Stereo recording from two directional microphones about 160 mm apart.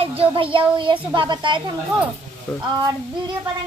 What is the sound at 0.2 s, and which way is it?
A child's voice, 35° right (ahead or behind).